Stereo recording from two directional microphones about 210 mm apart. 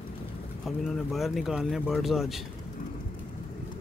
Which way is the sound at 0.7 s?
Centre (ahead or behind).